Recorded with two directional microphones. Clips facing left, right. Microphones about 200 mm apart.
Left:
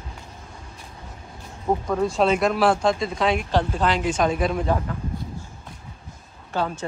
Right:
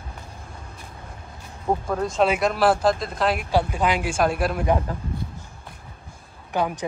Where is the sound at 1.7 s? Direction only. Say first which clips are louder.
Left 2 dB; 5° right (ahead or behind).